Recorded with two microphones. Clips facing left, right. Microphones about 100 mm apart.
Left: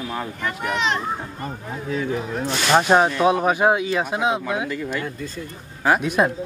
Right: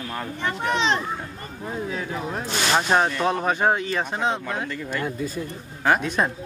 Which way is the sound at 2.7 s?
15° left (ahead or behind).